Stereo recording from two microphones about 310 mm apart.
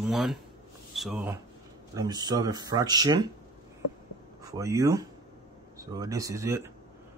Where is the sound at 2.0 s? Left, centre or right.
Centre.